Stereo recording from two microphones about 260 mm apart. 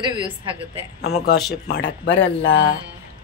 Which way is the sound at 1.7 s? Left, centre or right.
Left.